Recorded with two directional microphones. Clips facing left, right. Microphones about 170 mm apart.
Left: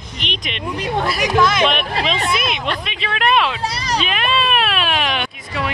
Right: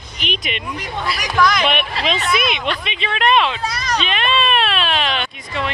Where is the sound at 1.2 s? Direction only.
25° left (ahead or behind).